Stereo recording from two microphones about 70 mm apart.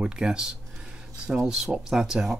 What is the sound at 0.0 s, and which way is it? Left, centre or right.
Speech, centre.